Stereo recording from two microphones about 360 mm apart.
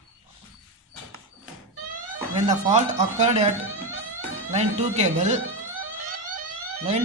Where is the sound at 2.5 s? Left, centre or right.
Centre.